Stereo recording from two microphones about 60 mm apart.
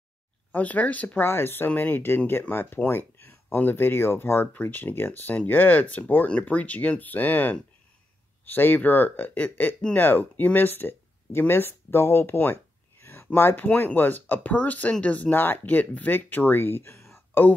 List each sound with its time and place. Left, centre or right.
0.5 s speech: left
1.2 s speech: left
13.0 s a sound: left
13.3 s speech: left
15.3 s speech: left